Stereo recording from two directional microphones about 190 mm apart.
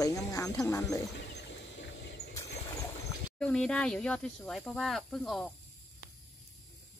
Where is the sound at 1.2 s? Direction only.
65° left (ahead or behind).